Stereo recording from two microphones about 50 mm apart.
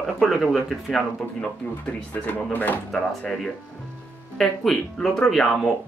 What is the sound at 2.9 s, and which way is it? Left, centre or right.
Speech, centre.